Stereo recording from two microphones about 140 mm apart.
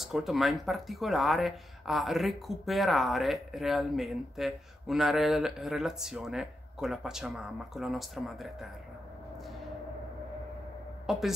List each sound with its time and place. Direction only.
0.0 s speech: centre (ahead or behind)
11.1 s speech: centre (ahead or behind)